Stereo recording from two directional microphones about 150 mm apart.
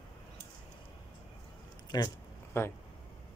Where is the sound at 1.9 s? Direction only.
20° left (ahead or behind).